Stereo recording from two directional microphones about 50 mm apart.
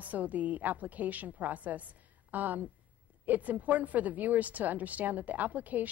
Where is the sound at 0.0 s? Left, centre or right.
Right.